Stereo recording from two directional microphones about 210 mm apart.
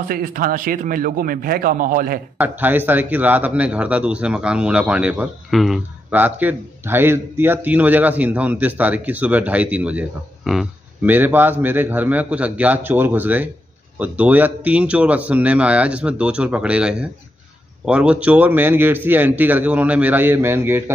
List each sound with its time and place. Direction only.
0.1 s a man's voice: 40° right (ahead or behind)
2.3 s a man's voice: 10° right (ahead or behind)